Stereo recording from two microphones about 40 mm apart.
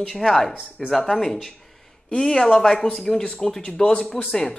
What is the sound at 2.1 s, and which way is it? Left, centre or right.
Speech, centre.